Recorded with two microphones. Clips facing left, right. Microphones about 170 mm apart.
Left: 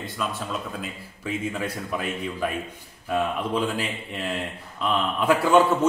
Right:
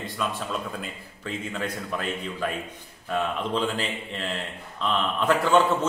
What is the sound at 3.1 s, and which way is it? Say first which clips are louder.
A man's voice: left 2 dB; 10° left (ahead or behind).